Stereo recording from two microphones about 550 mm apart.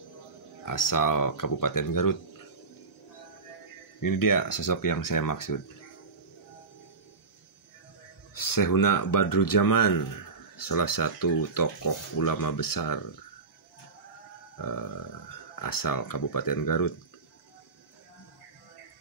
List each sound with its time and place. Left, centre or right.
0.7 s speech: left
4.0 s speech: left
8.4 s speech: left
14.6 s speech: left